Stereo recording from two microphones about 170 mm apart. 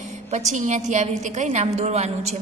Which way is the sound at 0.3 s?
45° right (ahead or behind).